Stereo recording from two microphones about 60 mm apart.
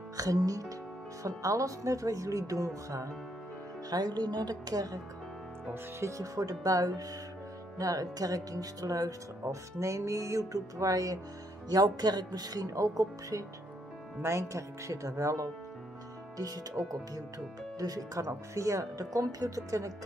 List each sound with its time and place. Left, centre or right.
0.2 s speech: right
1.2 s speech: right
3.9 s speech: right
5.9 s speech: right
7.7 s speech: right
9.8 s music: right
11.7 s speech: right
14.2 s speech: right
16.3 s speech: right
17.7 s speech: right